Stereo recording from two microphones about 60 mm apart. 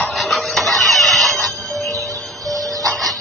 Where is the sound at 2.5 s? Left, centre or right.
Right.